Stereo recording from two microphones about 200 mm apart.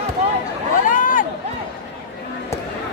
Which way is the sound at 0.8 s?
40° left (ahead or behind).